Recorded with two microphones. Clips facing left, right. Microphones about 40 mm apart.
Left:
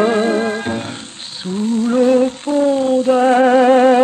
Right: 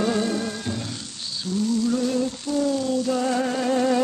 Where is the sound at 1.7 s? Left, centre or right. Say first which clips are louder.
Left 11 dB; left.